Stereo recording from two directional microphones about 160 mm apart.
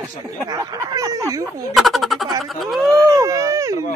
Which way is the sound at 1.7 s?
Centre (ahead or behind).